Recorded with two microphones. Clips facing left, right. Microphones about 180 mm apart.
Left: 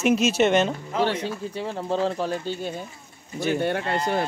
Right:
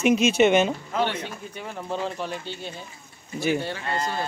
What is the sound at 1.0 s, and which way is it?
Speech, 35° left (ahead or behind).